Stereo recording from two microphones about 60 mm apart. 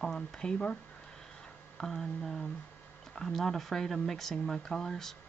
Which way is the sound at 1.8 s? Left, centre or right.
Centre.